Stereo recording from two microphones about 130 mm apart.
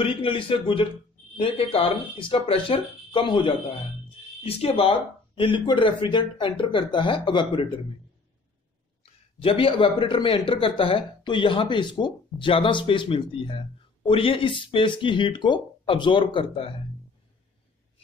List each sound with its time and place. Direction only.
0.0 s speech: 45° left (ahead or behind)
9.0 s speech: 45° left (ahead or behind)